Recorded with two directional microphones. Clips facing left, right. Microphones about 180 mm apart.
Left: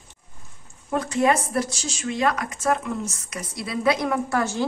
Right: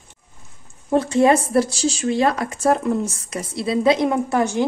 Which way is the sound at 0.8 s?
30° right (ahead or behind).